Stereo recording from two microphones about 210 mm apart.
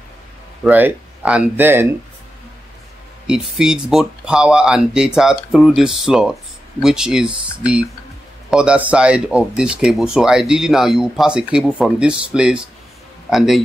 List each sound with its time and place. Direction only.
0.7 s speech: 10° right (ahead or behind)
3.3 s speech: 5° right (ahead or behind)
8.5 s speech: 5° right (ahead or behind)